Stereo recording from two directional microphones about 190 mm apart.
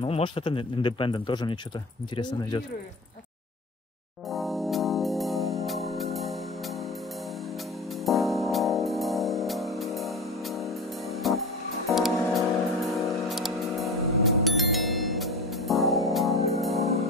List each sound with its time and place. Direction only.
0.0 s speech: 25° left (ahead or behind)
4.3 s organ: centre (ahead or behind)
8.0 s music: centre (ahead or behind)